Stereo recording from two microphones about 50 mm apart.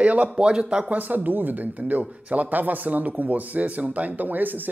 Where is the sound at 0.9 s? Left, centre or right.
Right.